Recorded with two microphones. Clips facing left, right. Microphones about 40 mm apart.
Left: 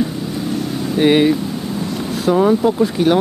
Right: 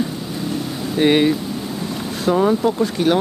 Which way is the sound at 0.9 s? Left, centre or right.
Centre.